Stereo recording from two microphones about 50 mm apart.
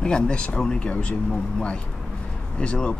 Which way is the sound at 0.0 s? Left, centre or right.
Centre.